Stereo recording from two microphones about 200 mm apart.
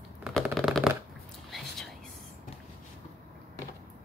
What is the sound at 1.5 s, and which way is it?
Whispering, centre (ahead or behind).